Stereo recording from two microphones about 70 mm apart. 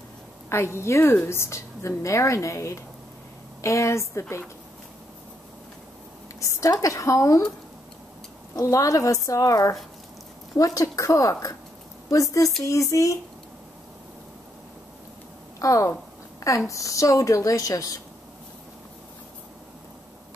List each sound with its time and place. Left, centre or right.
0.5 s a woman's voice: left
6.4 s a woman's voice: left
8.5 s a woman's voice: left
15.6 s a woman's voice: left